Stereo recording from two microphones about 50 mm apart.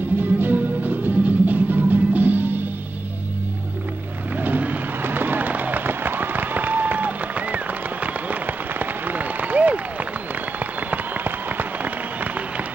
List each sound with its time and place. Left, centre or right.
0.2 s music: right
4.4 s vehicle: right
5.0 s fireworks: right
10.9 s applause: right